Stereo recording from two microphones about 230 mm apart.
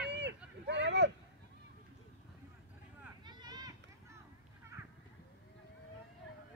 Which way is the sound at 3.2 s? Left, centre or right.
Centre.